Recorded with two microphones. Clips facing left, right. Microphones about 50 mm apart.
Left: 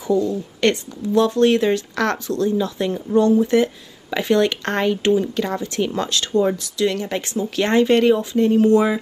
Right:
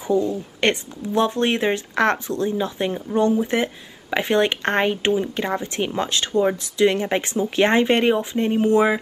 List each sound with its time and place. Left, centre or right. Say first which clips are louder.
0.0 s speech: left 1 dB; right